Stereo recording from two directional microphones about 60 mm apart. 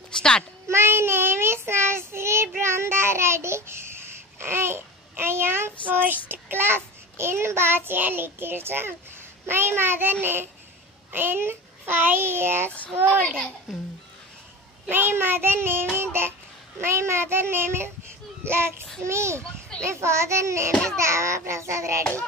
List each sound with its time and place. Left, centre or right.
0.1 s a sound: centre
0.7 s child singing: right
4.4 s a child's voice: right
9.5 s child singing: right
11.1 s a child's voice: right
13.2 s a child's voice: centre
13.7 s speech: centre
14.9 s child singing: right
16.0 s music: right
16.8 s child singing: right
20.7 s a child's voice: centre
21.0 s child singing: right